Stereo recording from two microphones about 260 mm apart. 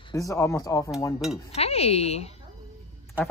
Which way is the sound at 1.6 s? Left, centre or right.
Left.